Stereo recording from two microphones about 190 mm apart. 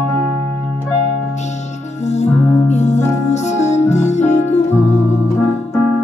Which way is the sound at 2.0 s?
35° left (ahead or behind).